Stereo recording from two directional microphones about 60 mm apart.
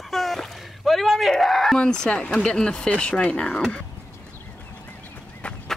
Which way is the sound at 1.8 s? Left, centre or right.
Centre.